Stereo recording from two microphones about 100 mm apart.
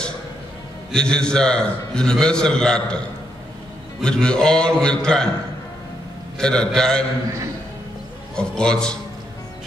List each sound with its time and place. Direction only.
0.9 s a man's voice: 5° left (ahead or behind)
4.0 s a man's voice: 10° left (ahead or behind)
6.3 s a man's voice: 5° left (ahead or behind)
8.4 s a man's voice: 10° left (ahead or behind)